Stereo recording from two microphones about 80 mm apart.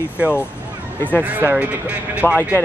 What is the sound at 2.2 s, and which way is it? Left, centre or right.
Speech, centre.